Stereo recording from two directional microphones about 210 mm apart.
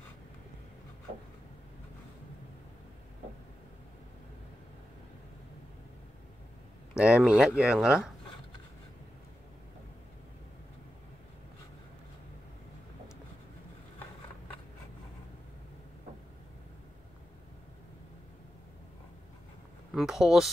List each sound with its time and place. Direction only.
6.9 s speech: 5° right (ahead or behind)
19.9 s speech: centre (ahead or behind)